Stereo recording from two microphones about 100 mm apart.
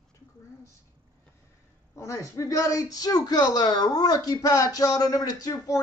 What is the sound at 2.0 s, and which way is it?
Speech, 30° left (ahead or behind).